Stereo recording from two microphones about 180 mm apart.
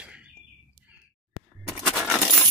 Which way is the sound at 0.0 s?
5° right (ahead or behind).